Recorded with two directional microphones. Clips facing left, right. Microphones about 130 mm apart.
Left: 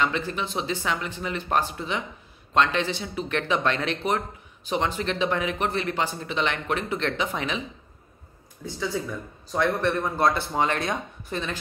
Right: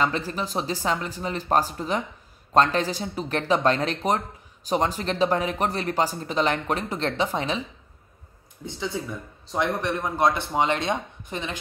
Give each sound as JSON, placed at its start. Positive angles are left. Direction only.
{"t": 0.0, "sound": "speech", "side_deg": -35}
{"t": 8.6, "sound": "speech", "side_deg": -20}